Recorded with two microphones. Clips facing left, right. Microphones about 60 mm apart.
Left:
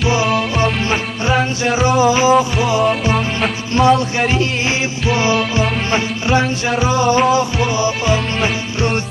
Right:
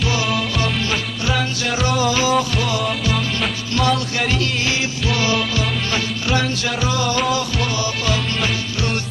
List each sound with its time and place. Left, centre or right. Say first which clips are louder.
0.0 s music: left 5 dB; left
1.8 s music: left 6 dB; left